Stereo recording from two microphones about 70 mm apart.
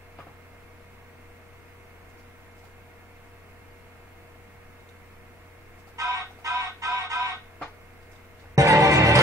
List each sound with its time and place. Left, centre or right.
5.9 s music: right
8.5 s music: right